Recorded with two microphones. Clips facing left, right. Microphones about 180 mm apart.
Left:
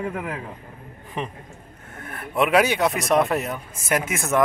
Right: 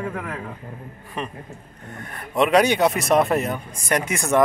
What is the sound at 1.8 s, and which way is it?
Speech, centre (ahead or behind).